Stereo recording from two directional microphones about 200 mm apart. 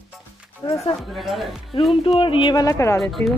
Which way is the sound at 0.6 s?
20° left (ahead or behind).